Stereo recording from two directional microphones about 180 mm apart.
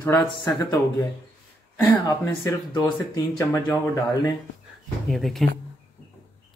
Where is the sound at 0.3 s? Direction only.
25° left (ahead or behind).